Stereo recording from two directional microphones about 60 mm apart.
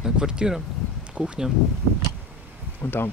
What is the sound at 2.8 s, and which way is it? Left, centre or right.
Speech, left.